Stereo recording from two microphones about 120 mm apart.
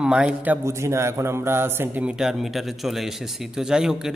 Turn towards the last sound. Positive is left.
turn(degrees=-5)  # may be behind; listen again after turning